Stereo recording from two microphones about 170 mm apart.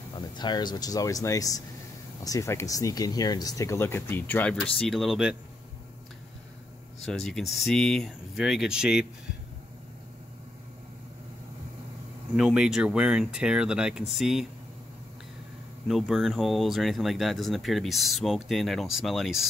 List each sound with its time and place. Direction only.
0.4 s speech: 25° left (ahead or behind); by 5.4 s centre (ahead or behind)
7.1 s speech: centre (ahead or behind)
12.4 s speech: 5° right (ahead or behind)
15.9 s speech: centre (ahead or behind)